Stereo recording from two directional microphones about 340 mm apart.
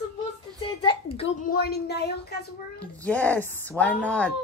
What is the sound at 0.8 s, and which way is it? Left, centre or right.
A woman's voice, centre.